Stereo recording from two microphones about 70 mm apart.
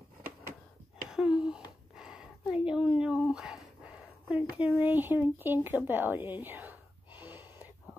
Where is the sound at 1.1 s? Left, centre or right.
Centre.